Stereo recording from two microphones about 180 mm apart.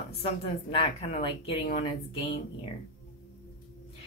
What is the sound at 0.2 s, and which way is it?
Speech, 30° left (ahead or behind).